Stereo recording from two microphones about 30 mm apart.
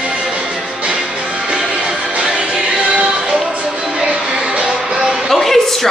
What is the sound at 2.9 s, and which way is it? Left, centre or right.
Music, right.